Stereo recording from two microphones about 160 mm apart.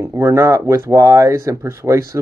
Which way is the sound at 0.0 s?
20° right (ahead or behind).